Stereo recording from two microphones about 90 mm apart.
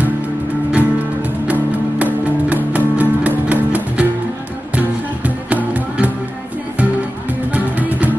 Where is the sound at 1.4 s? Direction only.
15° right (ahead or behind).